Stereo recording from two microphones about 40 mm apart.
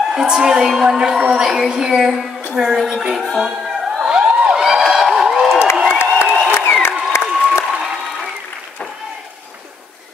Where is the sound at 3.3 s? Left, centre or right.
Centre.